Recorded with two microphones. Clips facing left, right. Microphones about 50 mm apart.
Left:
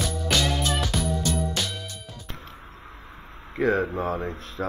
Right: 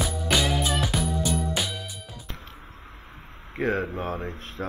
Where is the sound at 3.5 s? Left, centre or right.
Left.